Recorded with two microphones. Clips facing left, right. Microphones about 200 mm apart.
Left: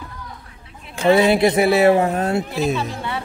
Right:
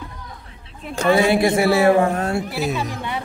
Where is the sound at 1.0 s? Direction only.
20° left (ahead or behind).